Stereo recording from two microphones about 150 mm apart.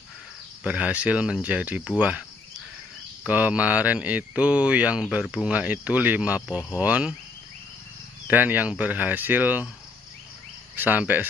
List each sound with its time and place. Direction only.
0.7 s speech: 10° right (ahead or behind)
3.3 s speech: 10° right (ahead or behind)
8.3 s speech: 10° right (ahead or behind)
10.9 s speech: 10° right (ahead or behind)